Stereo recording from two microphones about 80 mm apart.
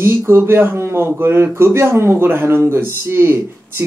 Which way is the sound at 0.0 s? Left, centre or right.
Right.